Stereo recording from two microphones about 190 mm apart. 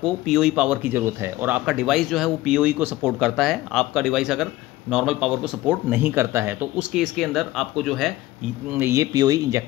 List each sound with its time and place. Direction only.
0.0 s speech: centre (ahead or behind)
8.7 s speech: 15° right (ahead or behind)